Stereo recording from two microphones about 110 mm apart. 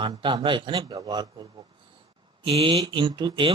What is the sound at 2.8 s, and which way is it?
Speech, 45° right (ahead or behind).